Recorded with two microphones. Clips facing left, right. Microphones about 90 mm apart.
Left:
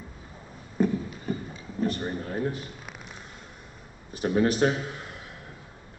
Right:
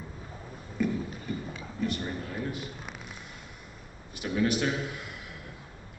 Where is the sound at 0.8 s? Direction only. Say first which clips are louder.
Left 4 dB; 35° left (ahead or behind).